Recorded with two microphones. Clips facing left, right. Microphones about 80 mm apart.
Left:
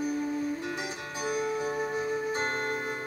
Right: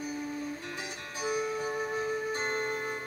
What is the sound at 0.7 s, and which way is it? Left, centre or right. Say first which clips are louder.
Music: left 5 dB; centre.